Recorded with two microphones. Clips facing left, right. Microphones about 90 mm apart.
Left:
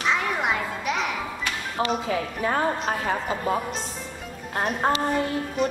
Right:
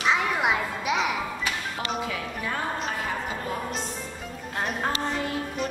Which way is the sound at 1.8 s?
30° left (ahead or behind).